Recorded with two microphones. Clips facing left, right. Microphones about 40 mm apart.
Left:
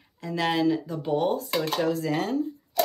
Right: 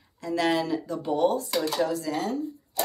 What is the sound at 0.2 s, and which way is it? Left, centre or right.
Speech, centre.